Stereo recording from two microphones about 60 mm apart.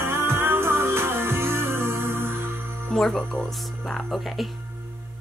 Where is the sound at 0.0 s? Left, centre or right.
Right.